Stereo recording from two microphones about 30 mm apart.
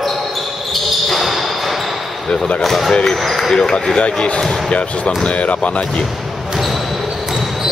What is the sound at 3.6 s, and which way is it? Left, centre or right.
Speech, left.